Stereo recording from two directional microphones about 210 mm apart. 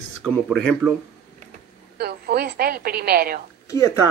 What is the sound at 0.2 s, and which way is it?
Speech, 5° left (ahead or behind).